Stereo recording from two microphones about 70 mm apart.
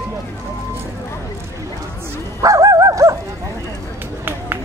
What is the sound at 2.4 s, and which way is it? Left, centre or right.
Bow-wow, right.